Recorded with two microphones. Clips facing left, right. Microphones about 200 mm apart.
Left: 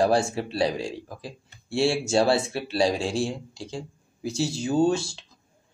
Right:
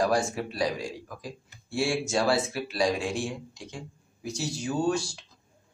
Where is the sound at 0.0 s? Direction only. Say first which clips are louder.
Left 4 dB; 30° left (ahead or behind).